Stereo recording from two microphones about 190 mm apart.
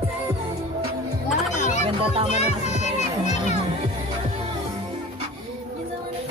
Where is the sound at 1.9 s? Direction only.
25° right (ahead or behind).